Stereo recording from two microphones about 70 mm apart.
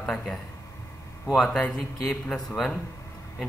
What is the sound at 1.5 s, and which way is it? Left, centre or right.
A man's voice, centre.